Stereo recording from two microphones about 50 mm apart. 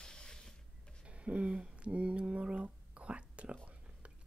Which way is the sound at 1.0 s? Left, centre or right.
Right.